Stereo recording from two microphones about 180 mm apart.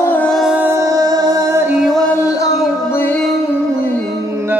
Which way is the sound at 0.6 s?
15° right (ahead or behind).